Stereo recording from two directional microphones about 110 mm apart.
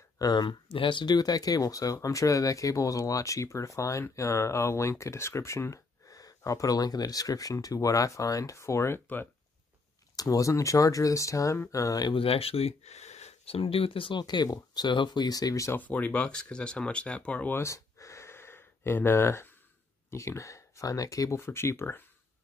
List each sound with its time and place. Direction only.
0.2 s speech: 40° left (ahead or behind); by 9.3 s 20° left (ahead or behind)
10.1 s speech: 35° left (ahead or behind)
12.1 s speech: 60° left (ahead or behind); by 15.8 s 30° left (ahead or behind)
15.8 s speech: 15° left (ahead or behind)
17.6 s gasp: 25° left (ahead or behind)
20.1 s speech: 25° left (ahead or behind)